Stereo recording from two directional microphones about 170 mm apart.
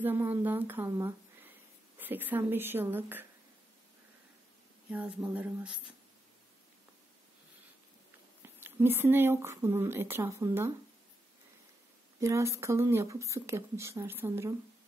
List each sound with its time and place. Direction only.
0.0 s speech: 10° right (ahead or behind)
4.8 s speech: 5° right (ahead or behind)
8.4 s speech: 15° right (ahead or behind)
12.2 s speech: 15° right (ahead or behind)